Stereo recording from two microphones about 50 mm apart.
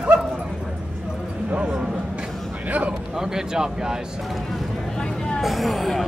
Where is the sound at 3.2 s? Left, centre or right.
Centre.